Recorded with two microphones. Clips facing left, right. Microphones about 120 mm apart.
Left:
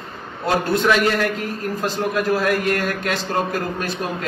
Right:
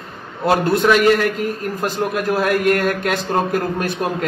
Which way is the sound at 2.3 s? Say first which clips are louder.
Right 3 dB; 55° right (ahead or behind).